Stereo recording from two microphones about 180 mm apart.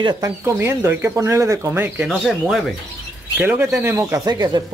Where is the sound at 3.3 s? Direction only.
10° right (ahead or behind).